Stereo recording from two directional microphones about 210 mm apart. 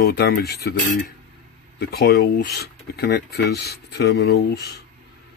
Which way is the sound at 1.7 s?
45° left (ahead or behind).